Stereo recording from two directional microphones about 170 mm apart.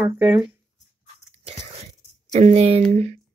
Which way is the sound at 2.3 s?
40° right (ahead or behind).